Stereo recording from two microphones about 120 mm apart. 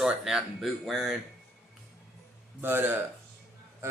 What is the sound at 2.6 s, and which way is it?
Speech, 20° right (ahead or behind).